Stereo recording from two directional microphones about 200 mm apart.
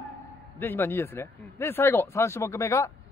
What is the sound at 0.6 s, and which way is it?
Speech, 10° left (ahead or behind).